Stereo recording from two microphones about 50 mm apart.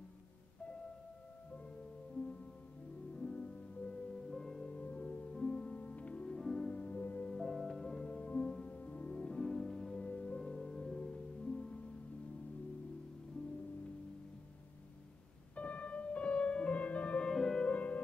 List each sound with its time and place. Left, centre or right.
3.2 s music: left
4.3 s music: centre
4.6 s music: left
5.3 s music: centre
6.2 s music: centre
6.7 s music: left
7.4 s music: centre
15.5 s music: left
17.3 s music: centre
17.6 s music: left